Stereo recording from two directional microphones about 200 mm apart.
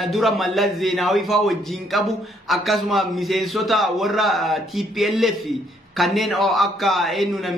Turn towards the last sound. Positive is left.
turn(degrees=0)  # may be behind; listen again after turning